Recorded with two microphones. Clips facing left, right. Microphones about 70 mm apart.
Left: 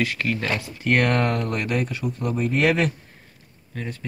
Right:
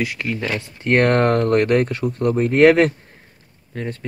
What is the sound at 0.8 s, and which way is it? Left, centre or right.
Speech, right.